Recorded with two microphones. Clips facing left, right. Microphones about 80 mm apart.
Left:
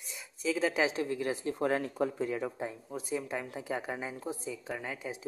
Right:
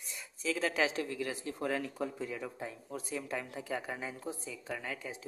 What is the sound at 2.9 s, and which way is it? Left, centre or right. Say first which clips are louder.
Speech: left 2 dB; centre.